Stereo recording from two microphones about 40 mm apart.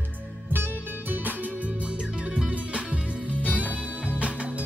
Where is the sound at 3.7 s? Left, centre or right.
Right.